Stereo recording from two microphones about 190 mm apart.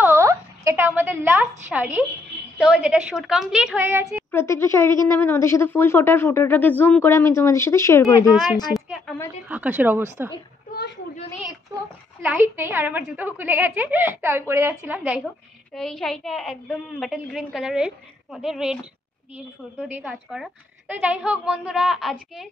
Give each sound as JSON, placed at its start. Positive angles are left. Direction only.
{"t": 0.0, "sound": "a sound", "side_deg": -15}
{"t": 1.7, "sound": "a woman's voice", "side_deg": -10}
{"t": 4.3, "sound": "speech", "side_deg": 10}
{"t": 8.7, "sound": "a sound", "side_deg": 0}
{"t": 9.5, "sound": "a woman's voice", "side_deg": -10}
{"t": 12.3, "sound": "a woman's voice", "side_deg": -10}
{"t": 19.9, "sound": "a woman's voice", "side_deg": -5}